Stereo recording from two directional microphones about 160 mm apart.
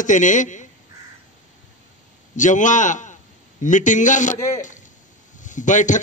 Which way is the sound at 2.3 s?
50° left (ahead or behind).